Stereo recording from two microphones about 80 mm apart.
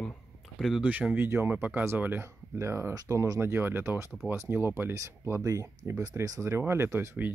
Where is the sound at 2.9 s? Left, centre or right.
Right.